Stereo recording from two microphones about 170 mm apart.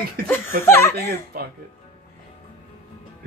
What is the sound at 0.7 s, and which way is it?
Speech, 15° left (ahead or behind).